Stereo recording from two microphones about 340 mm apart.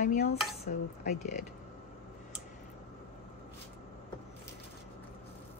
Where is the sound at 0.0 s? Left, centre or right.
Left.